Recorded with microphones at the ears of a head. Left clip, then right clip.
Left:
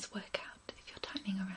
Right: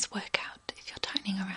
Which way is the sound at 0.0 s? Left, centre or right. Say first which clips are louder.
Right 9 dB; right.